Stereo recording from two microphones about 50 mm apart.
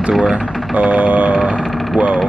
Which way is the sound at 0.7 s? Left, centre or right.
Right.